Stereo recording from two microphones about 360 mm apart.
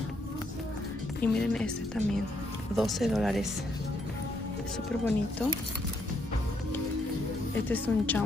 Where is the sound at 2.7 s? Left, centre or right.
Centre.